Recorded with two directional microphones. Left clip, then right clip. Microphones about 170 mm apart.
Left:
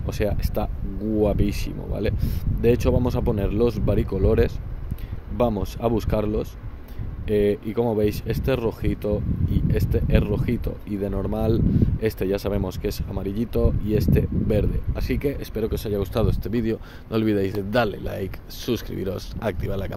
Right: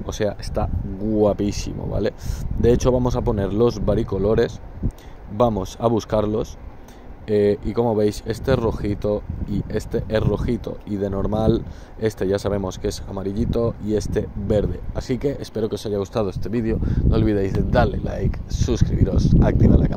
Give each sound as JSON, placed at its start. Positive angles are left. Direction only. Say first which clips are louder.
{"t": 0.2, "sound": "speech", "louder": "right 2 dB", "side_deg": 5}
{"t": 1.1, "sound": "speech", "louder": "right 4 dB", "side_deg": -15}
{"t": 5.4, "sound": "speech", "louder": "right 4 dB", "side_deg": -10}
{"t": 16.9, "sound": "speech", "louder": "right 2 dB", "side_deg": 30}
{"t": 17.8, "sound": "speech", "louder": "right 2 dB", "side_deg": 5}
{"t": 18.1, "sound": "speech", "louder": "right 3 dB", "side_deg": 30}